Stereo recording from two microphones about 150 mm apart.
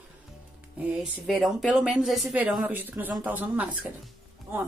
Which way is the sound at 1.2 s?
Centre (ahead or behind).